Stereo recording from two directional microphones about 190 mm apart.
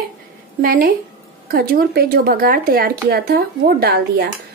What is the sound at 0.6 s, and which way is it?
A woman's voice, 50° right (ahead or behind).